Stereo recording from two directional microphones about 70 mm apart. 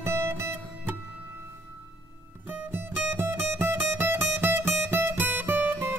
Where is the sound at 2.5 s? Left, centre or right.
Right.